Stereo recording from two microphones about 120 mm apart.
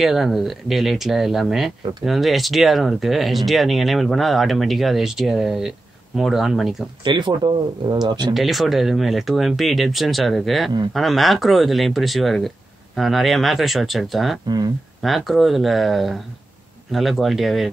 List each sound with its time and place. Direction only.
0.0 s speech: centre (ahead or behind)
7.1 s speech: 45° right (ahead or behind)
8.4 s speech: centre (ahead or behind)